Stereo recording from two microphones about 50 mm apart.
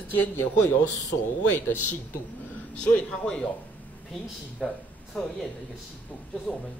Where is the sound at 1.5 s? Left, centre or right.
Left.